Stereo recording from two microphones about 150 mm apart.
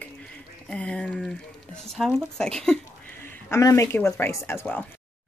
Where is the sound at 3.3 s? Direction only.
15° left (ahead or behind).